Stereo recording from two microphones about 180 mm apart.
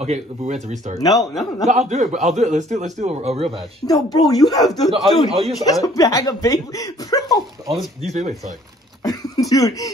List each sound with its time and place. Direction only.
0.0 s a man's voice: 40° right (ahead or behind)
1.1 s a man's voice: centre (ahead or behind)
1.7 s a man's voice: 40° right (ahead or behind)
3.8 s speech: 20° left (ahead or behind)
4.6 s a man's voice: centre (ahead or behind)
5.6 s speech: 20° left (ahead or behind)
7.6 s speech: centre (ahead or behind)
8.0 s a man's voice: 40° right (ahead or behind)
9.0 s speech: 20° left (ahead or behind)